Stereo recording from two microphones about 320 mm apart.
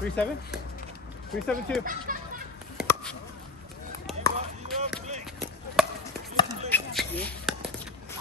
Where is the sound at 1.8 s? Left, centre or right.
Right.